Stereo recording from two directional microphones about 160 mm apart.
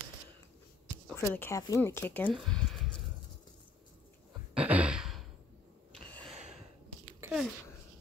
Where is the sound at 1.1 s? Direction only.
15° left (ahead or behind).